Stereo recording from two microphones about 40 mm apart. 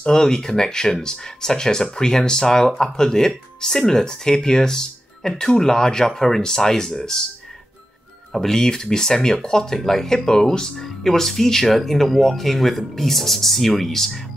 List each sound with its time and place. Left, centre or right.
0.0 s speech: centre
8.3 s speech: centre